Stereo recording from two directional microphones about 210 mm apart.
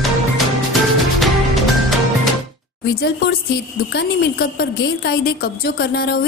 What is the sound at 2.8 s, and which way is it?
A woman's voice, 50° left (ahead or behind).